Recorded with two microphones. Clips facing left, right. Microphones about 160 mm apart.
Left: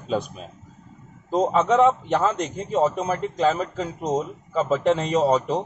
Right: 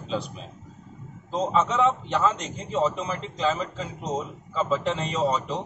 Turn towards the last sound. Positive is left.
turn(degrees=45)  # may be behind; listen again after turning